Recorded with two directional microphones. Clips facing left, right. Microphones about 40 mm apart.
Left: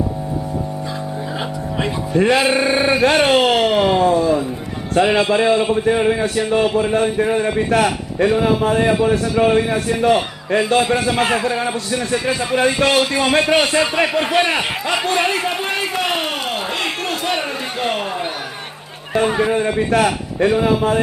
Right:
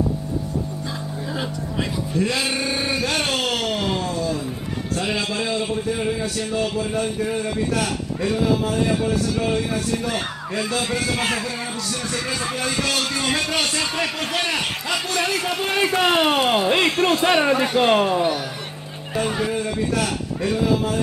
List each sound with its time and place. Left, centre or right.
2.1 s a man's voice: left
10.0 s a man's voice: left
16.0 s speech: right
19.1 s a man's voice: left